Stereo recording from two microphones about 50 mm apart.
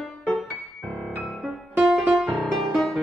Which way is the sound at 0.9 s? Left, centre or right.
Centre.